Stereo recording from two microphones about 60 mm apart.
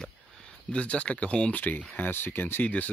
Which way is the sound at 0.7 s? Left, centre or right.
Centre.